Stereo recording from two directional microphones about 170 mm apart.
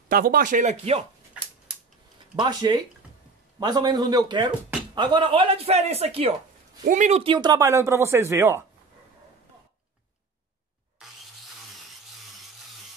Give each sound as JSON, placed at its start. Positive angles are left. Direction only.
{"t": 0.1, "sound": "speech", "side_deg": -60}
{"t": 2.3, "sound": "a man's voice", "side_deg": -25}
{"t": 7.3, "sound": "speech", "side_deg": -20}